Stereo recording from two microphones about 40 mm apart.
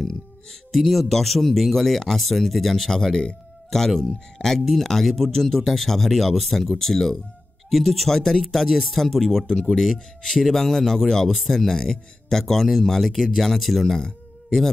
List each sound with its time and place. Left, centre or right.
0.0 s music: centre
0.7 s speech: centre
2.9 s speech: centre
13.8 s a sound: centre